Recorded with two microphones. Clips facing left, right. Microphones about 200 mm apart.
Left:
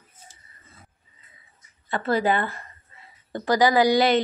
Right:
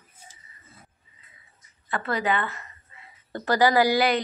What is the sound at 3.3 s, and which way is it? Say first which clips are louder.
Speech: left 1 dB; 15° left (ahead or behind).